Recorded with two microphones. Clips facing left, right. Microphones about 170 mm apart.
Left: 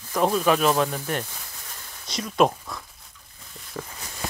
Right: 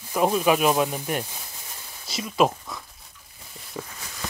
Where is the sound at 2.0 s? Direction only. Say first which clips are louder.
Left 1 dB; 5° right (ahead or behind).